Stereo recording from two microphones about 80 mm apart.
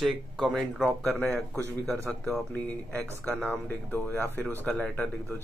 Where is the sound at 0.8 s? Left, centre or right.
Centre.